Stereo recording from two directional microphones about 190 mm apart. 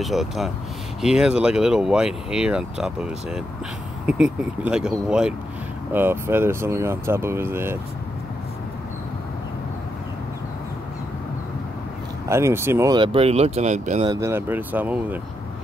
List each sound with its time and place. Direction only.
0.0 s speech: centre (ahead or behind)
12.3 s speech: 15° right (ahead or behind); by 14.0 s 35° right (ahead or behind)
14.0 s speech: 20° right (ahead or behind)